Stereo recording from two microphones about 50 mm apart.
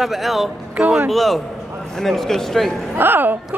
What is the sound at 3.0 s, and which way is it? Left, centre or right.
Speech, right.